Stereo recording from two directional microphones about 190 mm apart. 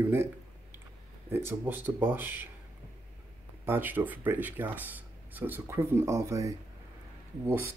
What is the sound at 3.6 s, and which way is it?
Speech, 10° right (ahead or behind).